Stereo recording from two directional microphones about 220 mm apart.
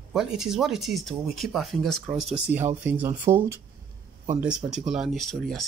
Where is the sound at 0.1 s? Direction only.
Centre (ahead or behind).